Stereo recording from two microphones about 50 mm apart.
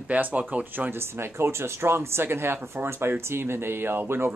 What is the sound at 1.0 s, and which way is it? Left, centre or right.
Speech, right.